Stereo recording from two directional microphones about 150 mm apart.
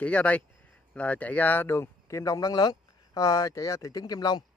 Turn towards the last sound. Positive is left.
turn(degrees=25)  # may be behind; listen again after turning